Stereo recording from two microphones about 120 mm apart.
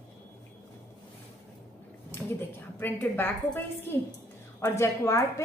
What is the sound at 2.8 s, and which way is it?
A woman's voice, 15° left (ahead or behind).